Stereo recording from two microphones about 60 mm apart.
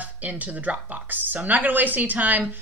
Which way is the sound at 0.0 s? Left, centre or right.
Right.